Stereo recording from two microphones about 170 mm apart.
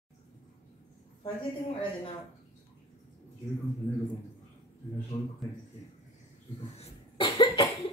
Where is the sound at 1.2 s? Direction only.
30° left (ahead or behind).